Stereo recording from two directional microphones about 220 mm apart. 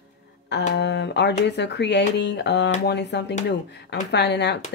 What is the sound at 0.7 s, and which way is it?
Speech, 50° left (ahead or behind).